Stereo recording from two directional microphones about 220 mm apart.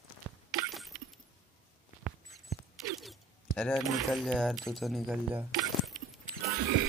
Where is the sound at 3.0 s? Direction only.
Centre (ahead or behind).